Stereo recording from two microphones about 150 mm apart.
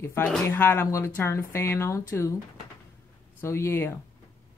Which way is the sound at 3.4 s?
15° left (ahead or behind).